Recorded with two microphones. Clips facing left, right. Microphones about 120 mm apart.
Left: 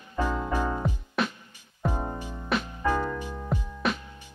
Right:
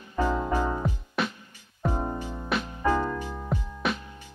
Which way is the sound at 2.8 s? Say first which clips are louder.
Right 3 dB; 15° right (ahead or behind).